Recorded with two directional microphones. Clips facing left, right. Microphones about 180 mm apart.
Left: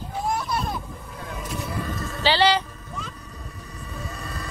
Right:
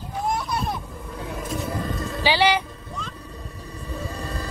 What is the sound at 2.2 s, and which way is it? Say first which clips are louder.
Speech: even; 10° right (ahead or behind).